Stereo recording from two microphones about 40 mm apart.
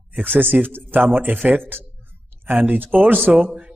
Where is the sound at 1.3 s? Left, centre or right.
Right.